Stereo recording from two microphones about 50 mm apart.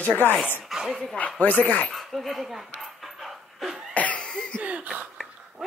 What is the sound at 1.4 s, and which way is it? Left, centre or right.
Speech, left.